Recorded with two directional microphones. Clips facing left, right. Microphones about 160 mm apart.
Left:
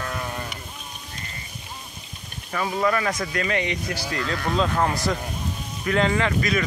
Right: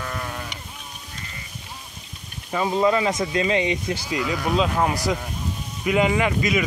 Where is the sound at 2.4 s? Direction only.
20° right (ahead or behind).